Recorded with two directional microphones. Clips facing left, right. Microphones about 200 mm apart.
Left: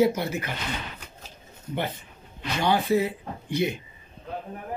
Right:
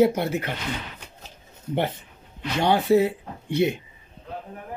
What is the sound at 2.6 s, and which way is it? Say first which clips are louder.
Speech: right 4 dB; 70° right (ahead or behind).